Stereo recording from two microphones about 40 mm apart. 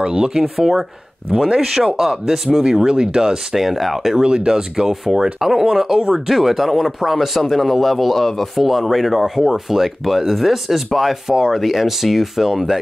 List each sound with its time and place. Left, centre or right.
0.0 s speech: centre
0.4 s speech: centre
3.5 s speech: centre
4.2 s speech: right